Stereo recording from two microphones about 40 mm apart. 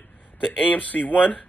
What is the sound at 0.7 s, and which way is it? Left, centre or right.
Speech, left.